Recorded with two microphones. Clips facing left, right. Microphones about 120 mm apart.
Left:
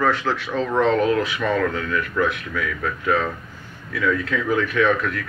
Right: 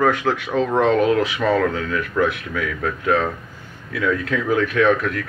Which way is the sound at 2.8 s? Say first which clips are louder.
Right 2 dB; 55° right (ahead or behind).